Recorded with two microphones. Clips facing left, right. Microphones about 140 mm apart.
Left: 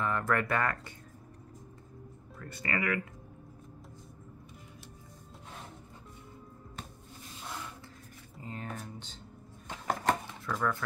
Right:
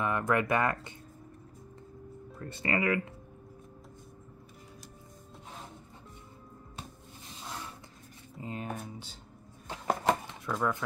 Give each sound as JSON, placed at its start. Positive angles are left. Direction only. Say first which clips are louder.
{"t": 0.0, "sound": "speech", "louder": "right 2 dB", "side_deg": -15}
{"t": 2.3, "sound": "speech", "louder": "right 4 dB", "side_deg": -25}
{"t": 8.4, "sound": "speech", "louder": "right 3 dB", "side_deg": -15}
{"t": 9.7, "sound": "a sound", "louder": "right 2 dB", "side_deg": -15}